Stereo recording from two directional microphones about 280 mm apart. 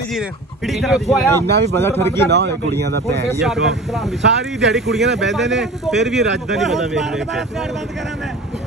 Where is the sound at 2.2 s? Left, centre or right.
Right.